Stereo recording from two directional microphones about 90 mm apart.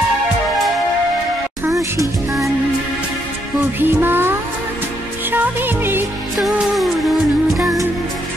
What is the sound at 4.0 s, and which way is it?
Music, 25° right (ahead or behind).